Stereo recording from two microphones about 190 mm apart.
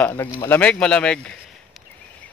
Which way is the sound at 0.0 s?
10° left (ahead or behind).